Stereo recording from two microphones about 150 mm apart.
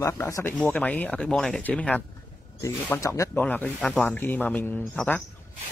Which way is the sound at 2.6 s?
20° left (ahead or behind).